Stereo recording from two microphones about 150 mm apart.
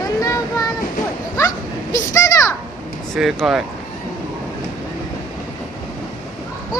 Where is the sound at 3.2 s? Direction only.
5° right (ahead or behind).